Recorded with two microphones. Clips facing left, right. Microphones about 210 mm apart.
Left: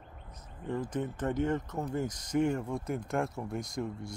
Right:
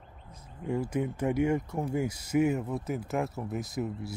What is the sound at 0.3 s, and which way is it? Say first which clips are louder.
Speech: right 4 dB; 10° right (ahead or behind).